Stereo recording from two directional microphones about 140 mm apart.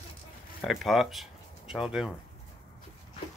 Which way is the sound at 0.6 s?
Centre (ahead or behind).